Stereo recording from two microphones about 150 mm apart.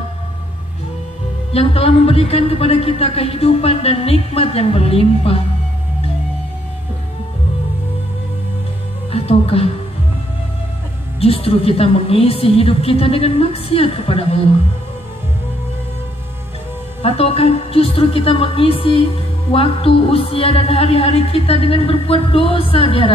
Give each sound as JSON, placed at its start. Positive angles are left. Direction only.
{"t": 1.5, "sound": "speech", "side_deg": 40}
{"t": 9.1, "sound": "speech", "side_deg": 40}
{"t": 11.1, "sound": "speech", "side_deg": 40}
{"t": 17.0, "sound": "speech", "side_deg": 40}